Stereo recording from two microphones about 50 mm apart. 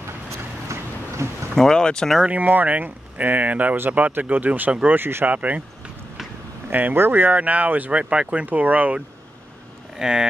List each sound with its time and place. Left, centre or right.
0.3 s a sound: right
1.5 s speech: centre
2.2 s speech: right
5.3 s speech: right
6.7 s speech: right
8.0 s speech: right
8.5 s speech: right
9.9 s speech: centre